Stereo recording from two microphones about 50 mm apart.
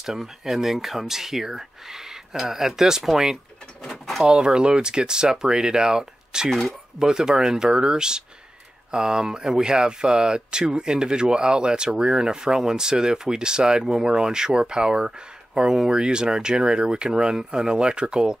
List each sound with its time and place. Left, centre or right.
0.0 s speech: centre
3.8 s drawer open or close: centre
4.2 s speech: centre